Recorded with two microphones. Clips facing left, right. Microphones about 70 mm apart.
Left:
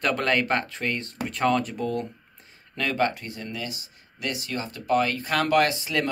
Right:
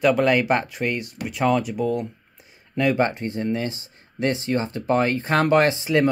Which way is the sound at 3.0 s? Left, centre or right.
Right.